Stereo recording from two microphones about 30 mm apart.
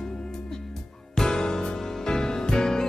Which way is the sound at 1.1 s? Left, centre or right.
Left.